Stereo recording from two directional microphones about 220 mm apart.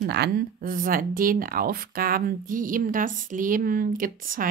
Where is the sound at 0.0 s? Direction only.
50° right (ahead or behind).